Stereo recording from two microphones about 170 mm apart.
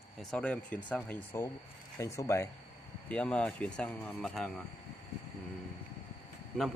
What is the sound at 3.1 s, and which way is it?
Speech, 5° left (ahead or behind).